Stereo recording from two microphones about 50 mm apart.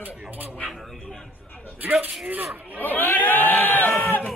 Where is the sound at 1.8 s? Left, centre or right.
Right.